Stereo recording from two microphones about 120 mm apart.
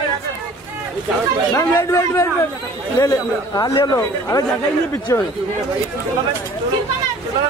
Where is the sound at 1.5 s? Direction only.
20° left (ahead or behind).